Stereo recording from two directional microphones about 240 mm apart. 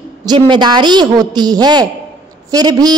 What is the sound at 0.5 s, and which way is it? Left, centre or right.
A woman's voice, centre.